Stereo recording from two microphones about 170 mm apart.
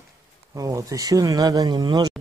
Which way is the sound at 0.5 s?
20° right (ahead or behind).